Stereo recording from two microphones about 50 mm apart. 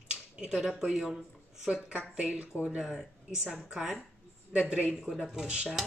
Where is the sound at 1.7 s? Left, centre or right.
Right.